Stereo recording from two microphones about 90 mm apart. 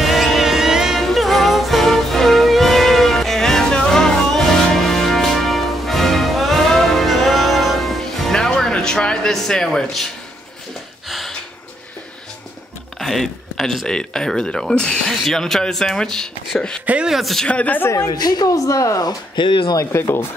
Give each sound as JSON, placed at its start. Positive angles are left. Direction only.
{"t": 0.0, "sound": "music", "side_deg": 0}
{"t": 11.1, "sound": "a sound", "side_deg": 0}
{"t": 13.0, "sound": "speech", "side_deg": 5}
{"t": 16.8, "sound": "speech", "side_deg": -15}
{"t": 17.1, "sound": "a man's voice", "side_deg": 0}
{"t": 17.5, "sound": "speech", "side_deg": 15}
{"t": 17.9, "sound": "speech", "side_deg": 50}
{"t": 19.9, "sound": "speech", "side_deg": 30}